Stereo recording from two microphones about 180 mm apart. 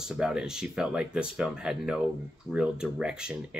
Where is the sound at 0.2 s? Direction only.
5° right (ahead or behind).